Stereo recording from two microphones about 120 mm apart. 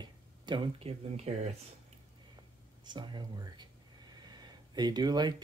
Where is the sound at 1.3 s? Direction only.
60° right (ahead or behind).